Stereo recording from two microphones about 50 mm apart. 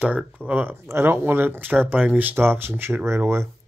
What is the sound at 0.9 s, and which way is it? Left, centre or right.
Speech, right.